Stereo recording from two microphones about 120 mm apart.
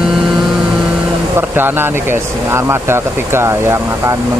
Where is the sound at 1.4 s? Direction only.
20° right (ahead or behind).